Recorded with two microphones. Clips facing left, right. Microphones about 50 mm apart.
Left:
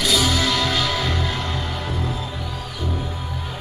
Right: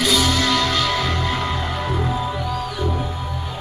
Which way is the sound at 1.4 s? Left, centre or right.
Centre.